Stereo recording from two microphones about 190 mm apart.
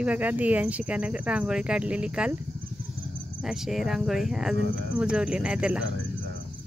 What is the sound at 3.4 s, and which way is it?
Speech, centre (ahead or behind).